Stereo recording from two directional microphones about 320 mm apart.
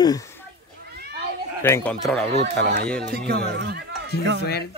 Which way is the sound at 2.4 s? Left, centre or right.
Right.